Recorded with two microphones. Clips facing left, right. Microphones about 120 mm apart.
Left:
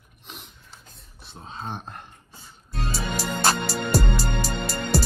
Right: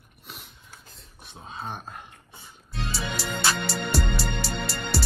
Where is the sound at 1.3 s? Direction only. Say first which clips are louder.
Left 1 dB; 5° right (ahead or behind).